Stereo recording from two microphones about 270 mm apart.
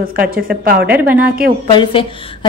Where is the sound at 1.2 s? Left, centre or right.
Right.